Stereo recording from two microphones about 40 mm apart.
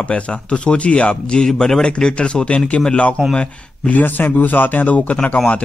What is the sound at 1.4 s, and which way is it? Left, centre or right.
Speech, centre.